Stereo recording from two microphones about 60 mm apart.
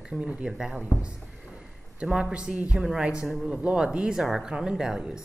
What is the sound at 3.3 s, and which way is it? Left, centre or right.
Speech, centre.